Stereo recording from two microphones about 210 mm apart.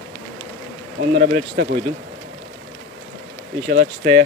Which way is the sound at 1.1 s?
50° right (ahead or behind).